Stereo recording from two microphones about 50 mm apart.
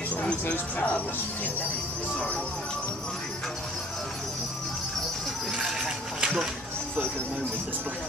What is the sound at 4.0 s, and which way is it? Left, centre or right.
Music, centre.